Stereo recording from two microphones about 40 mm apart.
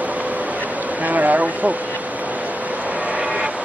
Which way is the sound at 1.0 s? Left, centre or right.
Right.